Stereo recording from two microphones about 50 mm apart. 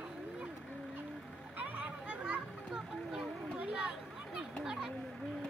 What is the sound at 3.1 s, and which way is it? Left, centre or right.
Children playing, centre.